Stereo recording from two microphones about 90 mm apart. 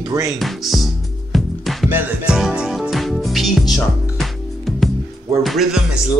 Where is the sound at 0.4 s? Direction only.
Centre (ahead or behind).